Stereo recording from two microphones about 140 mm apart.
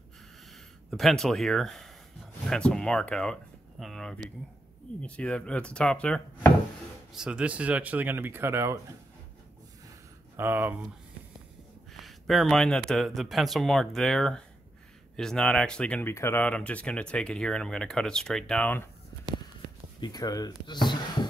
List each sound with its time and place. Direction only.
0.8 s speech: centre (ahead or behind)
7.2 s speech: 5° right (ahead or behind)
10.3 s speech: 15° right (ahead or behind)
11.9 s speech: centre (ahead or behind)
16.1 s speech: 20° left (ahead or behind)
20.0 s a sound: 30° left (ahead or behind)